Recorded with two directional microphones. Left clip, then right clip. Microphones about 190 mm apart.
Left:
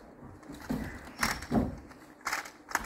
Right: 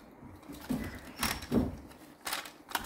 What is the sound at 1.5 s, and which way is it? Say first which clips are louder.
Door: right 1 dB; 15° right (ahead or behind).